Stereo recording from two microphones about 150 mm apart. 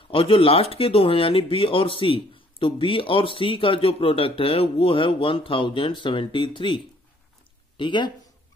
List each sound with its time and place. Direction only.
0.1 s speech: 35° left (ahead or behind)